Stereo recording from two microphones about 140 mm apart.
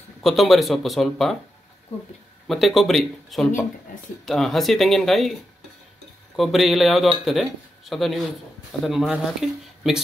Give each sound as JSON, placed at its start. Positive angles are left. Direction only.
{"t": 0.2, "sound": "speech", "side_deg": 0}
{"t": 2.4, "sound": "speech", "side_deg": 0}
{"t": 6.3, "sound": "speech", "side_deg": 0}